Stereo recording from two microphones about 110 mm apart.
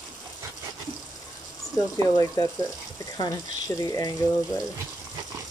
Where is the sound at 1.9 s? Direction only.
30° left (ahead or behind).